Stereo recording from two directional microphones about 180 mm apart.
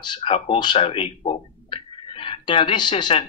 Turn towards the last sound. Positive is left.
turn(degrees=30)  # may be behind; listen again after turning